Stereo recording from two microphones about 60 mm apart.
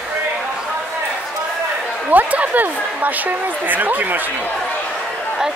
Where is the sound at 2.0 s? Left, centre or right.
Right.